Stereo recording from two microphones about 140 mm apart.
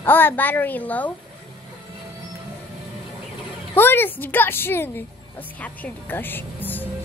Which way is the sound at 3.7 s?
15° left (ahead or behind).